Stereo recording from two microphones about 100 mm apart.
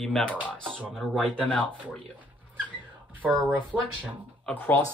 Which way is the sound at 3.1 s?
20° right (ahead or behind).